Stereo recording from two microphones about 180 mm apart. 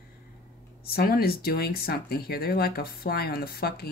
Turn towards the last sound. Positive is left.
turn(degrees=60)  # may be behind; listen again after turning